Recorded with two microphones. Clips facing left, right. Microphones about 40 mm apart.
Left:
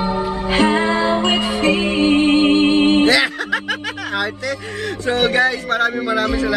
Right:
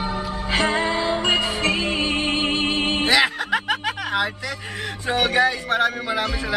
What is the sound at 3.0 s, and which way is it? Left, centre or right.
Music, centre.